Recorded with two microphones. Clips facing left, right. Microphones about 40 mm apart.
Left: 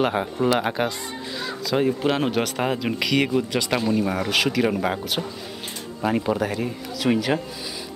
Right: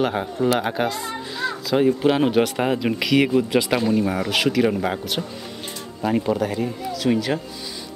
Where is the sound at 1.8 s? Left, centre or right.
Centre.